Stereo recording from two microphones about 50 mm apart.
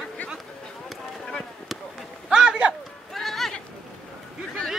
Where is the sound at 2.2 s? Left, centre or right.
Centre.